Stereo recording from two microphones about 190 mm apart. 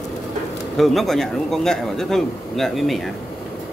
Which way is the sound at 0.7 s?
Centre (ahead or behind).